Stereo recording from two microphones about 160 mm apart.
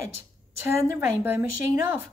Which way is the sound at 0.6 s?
20° right (ahead or behind).